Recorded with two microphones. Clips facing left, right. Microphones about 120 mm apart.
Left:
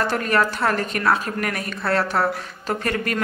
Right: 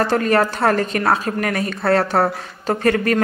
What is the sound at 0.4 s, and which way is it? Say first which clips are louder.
A woman's voice: right 4 dB; 45° right (ahead or behind).